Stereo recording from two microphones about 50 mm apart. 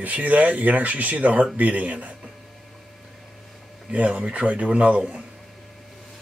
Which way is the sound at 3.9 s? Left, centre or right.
Right.